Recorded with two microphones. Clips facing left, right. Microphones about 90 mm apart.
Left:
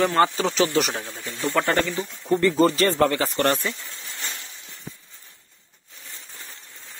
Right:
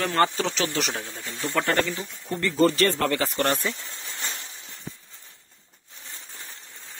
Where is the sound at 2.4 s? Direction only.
20° left (ahead or behind).